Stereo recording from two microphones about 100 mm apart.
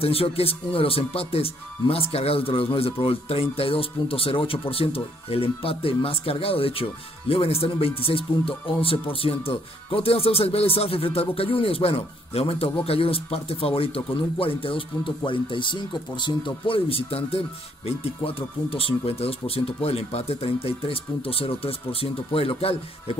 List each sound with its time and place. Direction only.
0.0 s speech: 70° left (ahead or behind)